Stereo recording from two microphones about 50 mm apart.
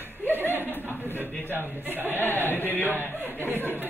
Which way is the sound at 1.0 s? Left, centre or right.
Left.